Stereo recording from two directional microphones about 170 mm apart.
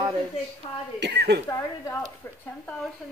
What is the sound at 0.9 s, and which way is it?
Speech, 85° right.